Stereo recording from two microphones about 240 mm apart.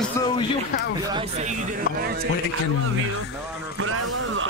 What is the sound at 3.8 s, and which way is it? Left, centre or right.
Speech, right.